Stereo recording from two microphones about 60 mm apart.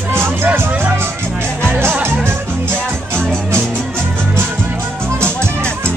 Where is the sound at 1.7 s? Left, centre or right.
Right.